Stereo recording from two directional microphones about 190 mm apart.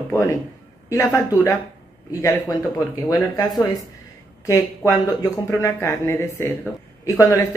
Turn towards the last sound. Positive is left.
turn(degrees=15)  # may be behind; listen again after turning